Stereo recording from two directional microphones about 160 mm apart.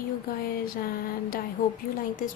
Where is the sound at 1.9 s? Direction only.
60° left (ahead or behind).